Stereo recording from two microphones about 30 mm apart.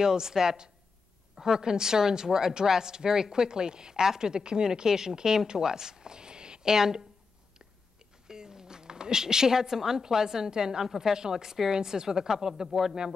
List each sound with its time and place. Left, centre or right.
0.0 s a woman's voice: right
8.3 s a woman's voice: right
12.6 s speech: centre